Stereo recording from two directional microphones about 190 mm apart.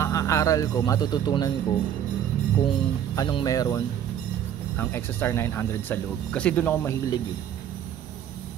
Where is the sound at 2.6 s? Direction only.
25° left (ahead or behind).